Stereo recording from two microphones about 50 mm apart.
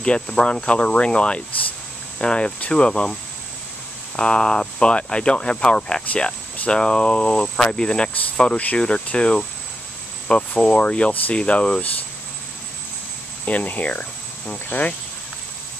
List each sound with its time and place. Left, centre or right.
0.0 s speech: left
4.2 s speech: centre
13.5 s speech: left